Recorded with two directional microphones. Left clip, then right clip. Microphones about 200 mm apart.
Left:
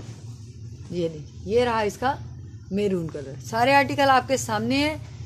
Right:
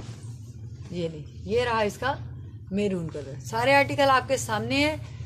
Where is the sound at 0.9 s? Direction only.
35° left (ahead or behind).